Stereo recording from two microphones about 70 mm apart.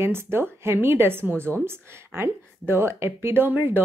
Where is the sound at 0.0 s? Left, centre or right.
Right.